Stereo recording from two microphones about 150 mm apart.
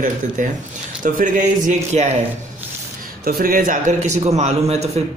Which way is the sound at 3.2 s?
80° right.